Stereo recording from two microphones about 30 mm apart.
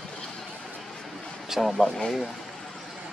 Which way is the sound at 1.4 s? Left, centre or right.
Centre.